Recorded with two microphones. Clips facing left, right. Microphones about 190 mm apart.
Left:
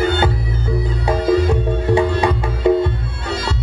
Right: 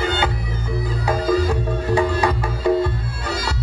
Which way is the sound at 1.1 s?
25° left (ahead or behind).